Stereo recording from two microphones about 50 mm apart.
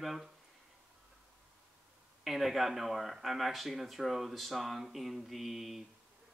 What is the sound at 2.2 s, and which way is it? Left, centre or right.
Speech, centre.